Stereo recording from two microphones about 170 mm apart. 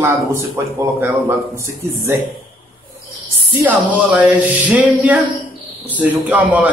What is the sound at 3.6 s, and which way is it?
A man's voice, 10° right (ahead or behind).